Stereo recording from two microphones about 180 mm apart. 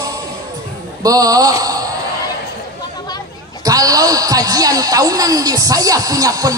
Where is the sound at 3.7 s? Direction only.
20° right (ahead or behind).